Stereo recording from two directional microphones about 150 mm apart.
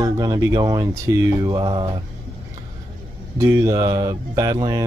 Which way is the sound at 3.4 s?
20° right (ahead or behind).